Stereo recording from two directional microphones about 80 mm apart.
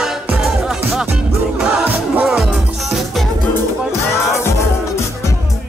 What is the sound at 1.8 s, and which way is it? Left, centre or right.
Music, centre.